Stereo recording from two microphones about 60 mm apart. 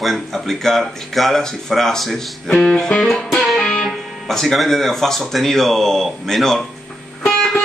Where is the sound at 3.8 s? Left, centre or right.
Centre.